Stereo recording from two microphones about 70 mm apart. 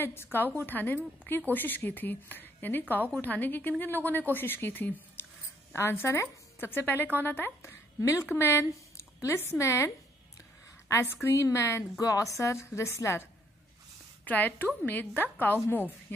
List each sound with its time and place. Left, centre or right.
0.0 s a woman's voice: left
7.7 s a woman's voice: left
8.4 s a woman's voice: left
14.2 s a woman's voice: left